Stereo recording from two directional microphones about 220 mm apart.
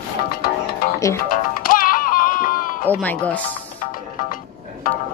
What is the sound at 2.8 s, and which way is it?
Speech, 5° left (ahead or behind).